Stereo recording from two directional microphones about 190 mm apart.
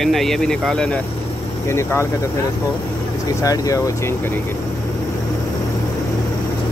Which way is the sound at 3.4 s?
15° left (ahead or behind).